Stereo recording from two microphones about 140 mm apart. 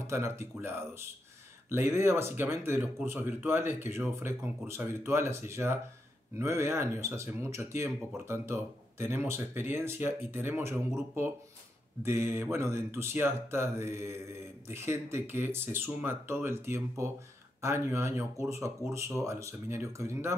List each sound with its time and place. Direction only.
0.0 s speech: 20° right (ahead or behind)
12.0 s speech: 15° right (ahead or behind)